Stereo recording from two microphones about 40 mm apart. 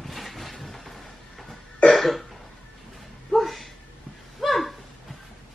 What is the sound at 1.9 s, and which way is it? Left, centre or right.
Cough, centre.